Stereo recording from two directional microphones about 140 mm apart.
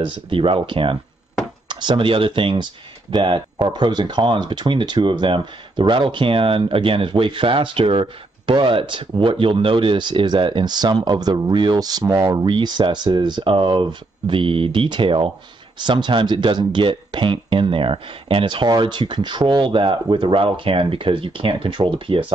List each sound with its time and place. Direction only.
0.3 s speech: 40° right (ahead or behind)